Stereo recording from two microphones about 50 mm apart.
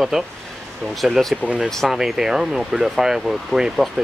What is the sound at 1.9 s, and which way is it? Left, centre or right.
Speech, centre.